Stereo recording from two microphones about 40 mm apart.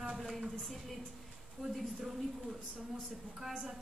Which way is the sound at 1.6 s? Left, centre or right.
Centre.